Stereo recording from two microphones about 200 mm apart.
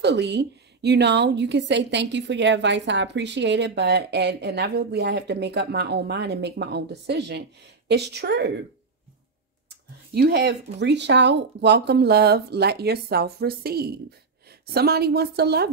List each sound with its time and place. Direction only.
0.0 s a woman's voice: 55° right (ahead or behind)
10.1 s a woman's voice: 55° right (ahead or behind)